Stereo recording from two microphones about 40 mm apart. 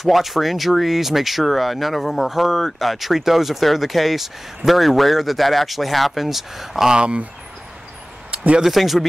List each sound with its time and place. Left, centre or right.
0.0 s speech: centre
6.9 s speech: right
8.6 s speech: centre